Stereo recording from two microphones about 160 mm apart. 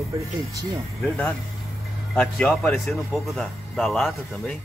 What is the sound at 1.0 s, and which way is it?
Speech, 5° left (ahead or behind).